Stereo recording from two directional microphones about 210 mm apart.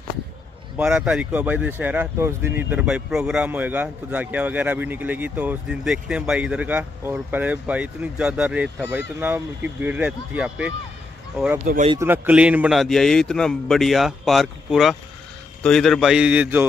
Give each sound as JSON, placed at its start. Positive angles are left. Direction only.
{"t": 0.7, "sound": "speech", "side_deg": -5}
{"t": 11.6, "sound": "speech", "side_deg": -40}
{"t": 11.9, "sound": "speech", "side_deg": -10}